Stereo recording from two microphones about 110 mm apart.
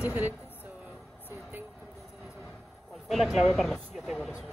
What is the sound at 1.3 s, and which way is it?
Vehicle, 20° right (ahead or behind).